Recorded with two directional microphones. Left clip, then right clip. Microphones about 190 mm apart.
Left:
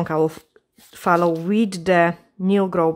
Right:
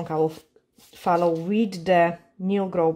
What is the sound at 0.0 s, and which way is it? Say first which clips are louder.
Speech: left 4 dB; 30° left (ahead or behind).